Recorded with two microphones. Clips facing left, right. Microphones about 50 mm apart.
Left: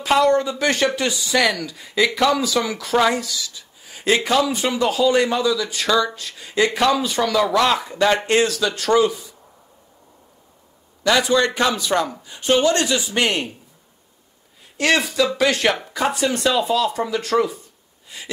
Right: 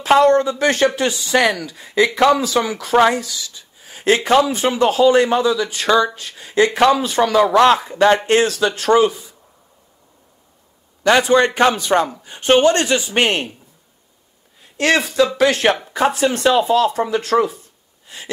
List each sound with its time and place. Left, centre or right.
0.0 s speech: right
2.9 s speech: right
11.1 s speech: right
14.8 s speech: right
18.0 s a sound: right